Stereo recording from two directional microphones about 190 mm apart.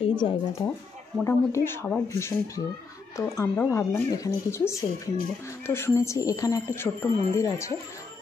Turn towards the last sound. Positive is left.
turn(degrees=15)  # may be behind; listen again after turning